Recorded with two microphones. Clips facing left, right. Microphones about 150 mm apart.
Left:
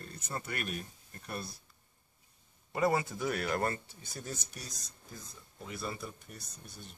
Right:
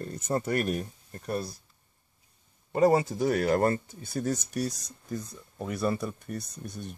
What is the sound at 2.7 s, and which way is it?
Speech, 35° right (ahead or behind).